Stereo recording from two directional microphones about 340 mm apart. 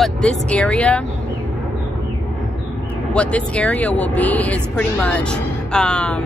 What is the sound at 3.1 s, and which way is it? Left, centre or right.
Speech, centre.